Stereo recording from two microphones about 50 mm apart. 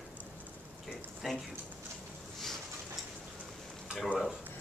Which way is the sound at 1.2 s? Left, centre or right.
Centre.